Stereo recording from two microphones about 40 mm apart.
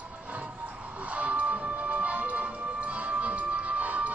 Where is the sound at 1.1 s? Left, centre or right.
Right.